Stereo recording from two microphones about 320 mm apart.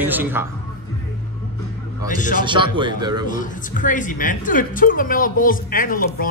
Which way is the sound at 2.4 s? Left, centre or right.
Centre.